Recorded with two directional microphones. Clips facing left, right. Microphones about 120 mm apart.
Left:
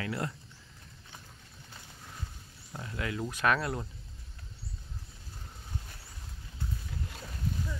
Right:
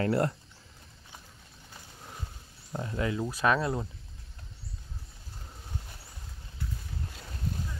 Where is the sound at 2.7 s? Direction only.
25° right (ahead or behind).